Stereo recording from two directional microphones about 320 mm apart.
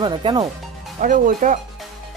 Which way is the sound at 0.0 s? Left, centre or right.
Centre.